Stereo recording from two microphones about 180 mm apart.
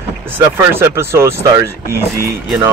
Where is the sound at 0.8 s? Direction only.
15° right (ahead or behind).